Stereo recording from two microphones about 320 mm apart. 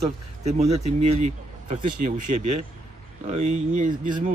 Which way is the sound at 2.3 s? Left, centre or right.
Right.